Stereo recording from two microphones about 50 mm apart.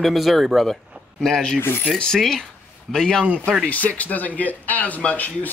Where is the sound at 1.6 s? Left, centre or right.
Left.